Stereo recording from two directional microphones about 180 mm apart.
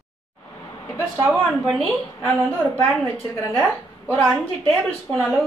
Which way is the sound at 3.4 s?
10° left (ahead or behind).